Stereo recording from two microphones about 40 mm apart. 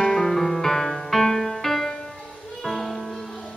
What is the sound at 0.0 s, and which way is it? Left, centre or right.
Music, centre.